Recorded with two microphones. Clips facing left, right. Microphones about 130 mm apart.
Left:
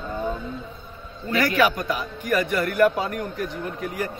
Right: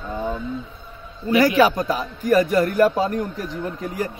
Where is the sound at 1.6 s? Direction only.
35° right (ahead or behind).